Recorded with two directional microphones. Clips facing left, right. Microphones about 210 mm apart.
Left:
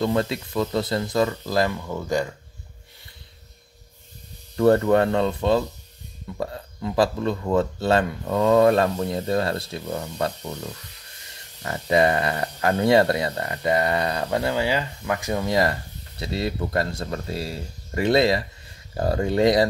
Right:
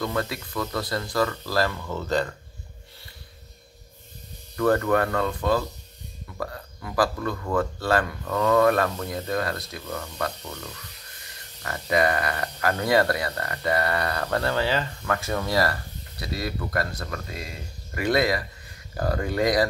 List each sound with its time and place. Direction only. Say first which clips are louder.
0.0 s speech: left 5 dB; 25° left (ahead or behind)
4.6 s speech: left 4 dB; 25° left (ahead or behind)